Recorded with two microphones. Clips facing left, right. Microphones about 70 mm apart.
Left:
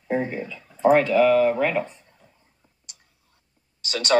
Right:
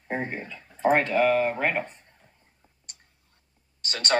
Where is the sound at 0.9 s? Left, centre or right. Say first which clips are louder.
Left 5 dB; right.